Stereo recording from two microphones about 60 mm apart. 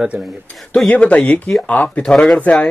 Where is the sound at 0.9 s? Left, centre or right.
Left.